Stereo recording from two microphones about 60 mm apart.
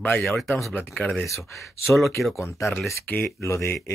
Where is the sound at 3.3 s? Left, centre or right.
Left.